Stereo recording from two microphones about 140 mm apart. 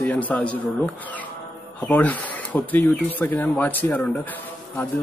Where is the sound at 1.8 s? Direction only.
10° left (ahead or behind).